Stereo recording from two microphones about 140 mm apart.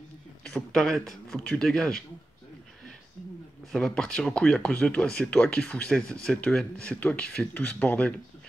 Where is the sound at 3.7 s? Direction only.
5° left (ahead or behind).